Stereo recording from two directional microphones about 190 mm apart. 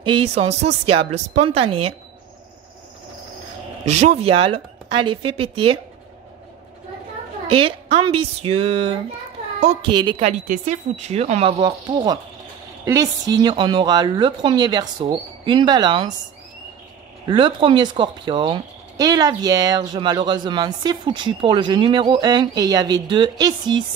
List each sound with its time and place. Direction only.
0.0 s speech: 30° right (ahead or behind)
3.8 s speech: 35° right (ahead or behind)
7.4 s speech: 30° right (ahead or behind)
10.4 s speech: 40° right (ahead or behind); by 16.1 s 25° right (ahead or behind)
17.3 s speech: 25° right (ahead or behind)